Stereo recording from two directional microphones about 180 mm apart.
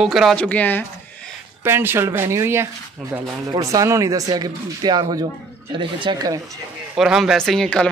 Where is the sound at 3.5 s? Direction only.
20° right (ahead or behind).